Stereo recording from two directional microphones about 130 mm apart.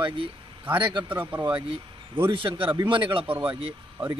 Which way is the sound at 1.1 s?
15° right (ahead or behind).